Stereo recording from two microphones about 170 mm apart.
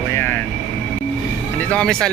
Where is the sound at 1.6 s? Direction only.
5° left (ahead or behind).